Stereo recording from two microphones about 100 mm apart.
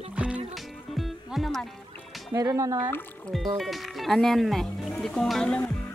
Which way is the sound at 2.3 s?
35° right (ahead or behind).